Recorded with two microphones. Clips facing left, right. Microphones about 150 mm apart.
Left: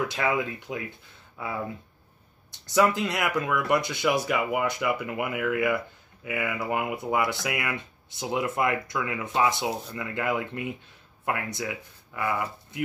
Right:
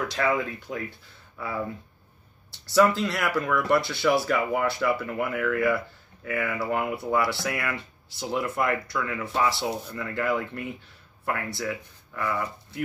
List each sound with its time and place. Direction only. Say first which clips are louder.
0.1 s speech: right 1 dB; 20° left (ahead or behind)
2.6 s speech: right 2 dB; 20° left (ahead or behind)